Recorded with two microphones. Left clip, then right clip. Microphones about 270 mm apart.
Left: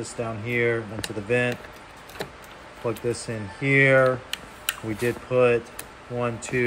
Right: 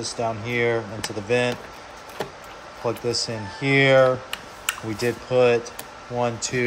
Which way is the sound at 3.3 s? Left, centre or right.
Centre.